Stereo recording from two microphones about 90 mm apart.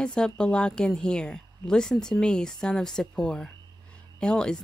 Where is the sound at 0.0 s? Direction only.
10° left (ahead or behind).